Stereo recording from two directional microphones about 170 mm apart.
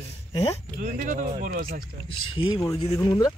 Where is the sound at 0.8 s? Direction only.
45° right (ahead or behind).